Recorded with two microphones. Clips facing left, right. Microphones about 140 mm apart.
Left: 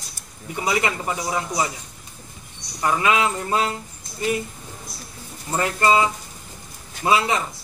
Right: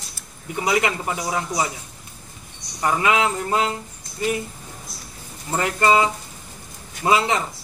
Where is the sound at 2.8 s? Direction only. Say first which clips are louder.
Even; 15° right (ahead or behind).